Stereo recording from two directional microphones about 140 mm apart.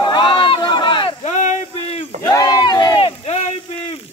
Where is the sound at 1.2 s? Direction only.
55° left (ahead or behind).